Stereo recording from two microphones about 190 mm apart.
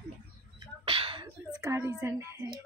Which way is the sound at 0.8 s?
30° right (ahead or behind).